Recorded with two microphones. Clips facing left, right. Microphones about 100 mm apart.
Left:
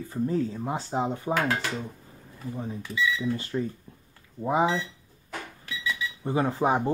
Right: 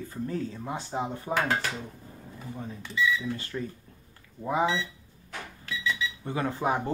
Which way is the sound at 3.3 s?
25° left (ahead or behind).